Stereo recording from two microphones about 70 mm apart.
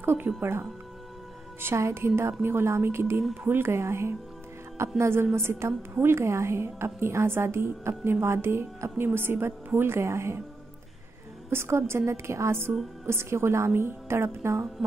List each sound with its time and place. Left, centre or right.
0.0 s music: right
0.4 s a woman's voice: right
11.5 s a woman's voice: right